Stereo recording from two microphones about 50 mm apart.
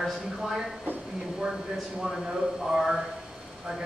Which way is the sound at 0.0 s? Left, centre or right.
Centre.